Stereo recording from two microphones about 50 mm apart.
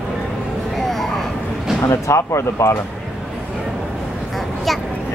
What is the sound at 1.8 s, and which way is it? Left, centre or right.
Speech, left.